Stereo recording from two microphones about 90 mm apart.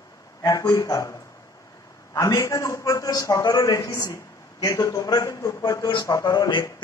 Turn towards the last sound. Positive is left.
turn(degrees=45)  # may be behind; listen again after turning